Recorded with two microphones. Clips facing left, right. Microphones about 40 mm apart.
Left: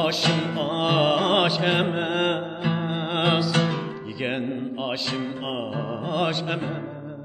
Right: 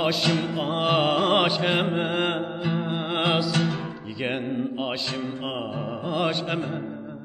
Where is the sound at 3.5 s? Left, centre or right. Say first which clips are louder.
Left 2 dB; centre.